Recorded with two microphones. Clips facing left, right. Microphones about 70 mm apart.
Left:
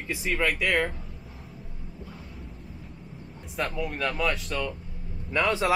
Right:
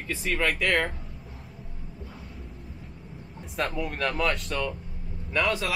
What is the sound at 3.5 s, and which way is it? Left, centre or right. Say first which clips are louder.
A man's voice: right 1 dB; centre.